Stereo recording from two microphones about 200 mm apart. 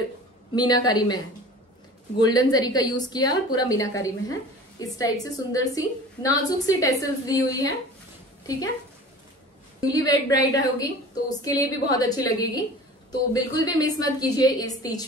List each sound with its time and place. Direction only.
0.6 s a woman's voice: 20° left (ahead or behind)
9.8 s a woman's voice: 20° left (ahead or behind)